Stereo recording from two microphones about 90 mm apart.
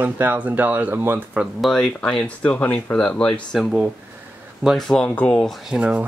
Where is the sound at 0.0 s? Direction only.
20° right (ahead or behind).